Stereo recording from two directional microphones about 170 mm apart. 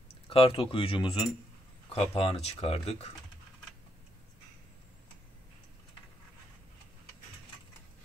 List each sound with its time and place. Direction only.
0.3 s speech: 30° left (ahead or behind)